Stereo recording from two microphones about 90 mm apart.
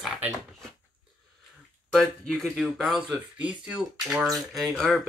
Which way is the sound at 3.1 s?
15° right (ahead or behind).